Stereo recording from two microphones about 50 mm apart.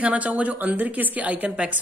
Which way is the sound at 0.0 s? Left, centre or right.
Right.